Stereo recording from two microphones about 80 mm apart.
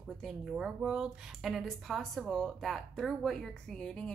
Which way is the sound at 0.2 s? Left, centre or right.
Centre.